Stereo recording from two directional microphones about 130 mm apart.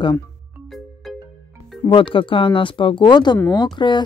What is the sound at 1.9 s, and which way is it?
Speech, 40° left (ahead or behind).